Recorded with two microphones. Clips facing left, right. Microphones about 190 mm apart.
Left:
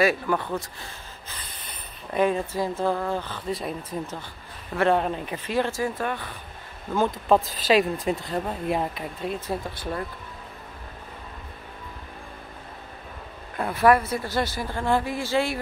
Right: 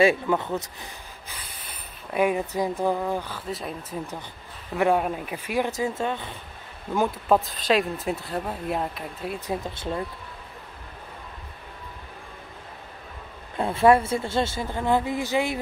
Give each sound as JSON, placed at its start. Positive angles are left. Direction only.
{"t": 0.0, "sound": "speech", "side_deg": -20}
{"t": 4.7, "sound": "a woman's voice", "side_deg": -10}
{"t": 6.9, "sound": "speech", "side_deg": -10}
{"t": 9.5, "sound": "a woman's voice", "side_deg": -20}
{"t": 13.6, "sound": "a woman's voice", "side_deg": -25}